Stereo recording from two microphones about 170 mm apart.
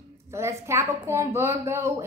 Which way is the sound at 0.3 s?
15° right (ahead or behind).